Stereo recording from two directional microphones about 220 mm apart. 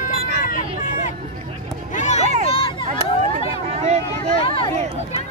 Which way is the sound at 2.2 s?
35° right (ahead or behind).